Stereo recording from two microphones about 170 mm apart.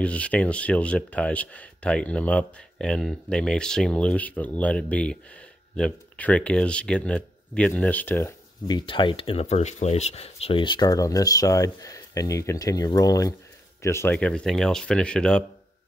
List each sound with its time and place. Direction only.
0.0 s speech: 5° left (ahead or behind)